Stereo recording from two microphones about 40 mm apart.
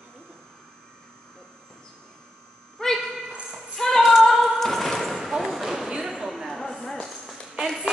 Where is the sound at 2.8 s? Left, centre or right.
Centre.